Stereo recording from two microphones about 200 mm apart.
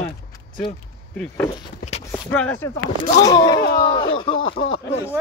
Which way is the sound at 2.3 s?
10° left (ahead or behind).